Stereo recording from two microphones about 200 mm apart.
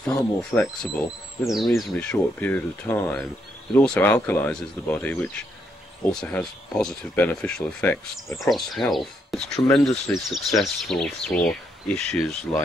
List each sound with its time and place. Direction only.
0.4 s speech: centre (ahead or behind)